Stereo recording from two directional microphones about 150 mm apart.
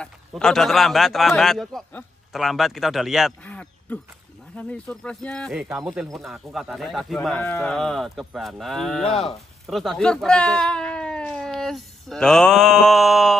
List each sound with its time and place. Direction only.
0.0 s speech: 5° left (ahead or behind)
3.4 s a sound: 10° left (ahead or behind)
4.6 s speech: 10° left (ahead or behind)
9.1 s speech: 40° left (ahead or behind)
9.7 s speech: centre (ahead or behind)